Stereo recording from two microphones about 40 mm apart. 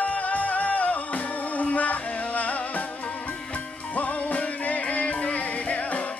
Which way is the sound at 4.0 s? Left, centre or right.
Left.